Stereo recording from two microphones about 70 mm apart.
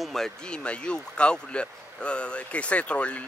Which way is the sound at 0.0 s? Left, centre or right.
Centre.